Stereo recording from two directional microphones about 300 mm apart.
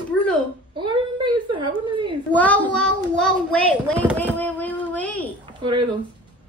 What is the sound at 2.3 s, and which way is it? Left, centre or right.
A child's voice, centre.